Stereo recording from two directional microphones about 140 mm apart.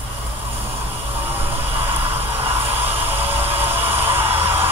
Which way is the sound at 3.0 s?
15° right (ahead or behind).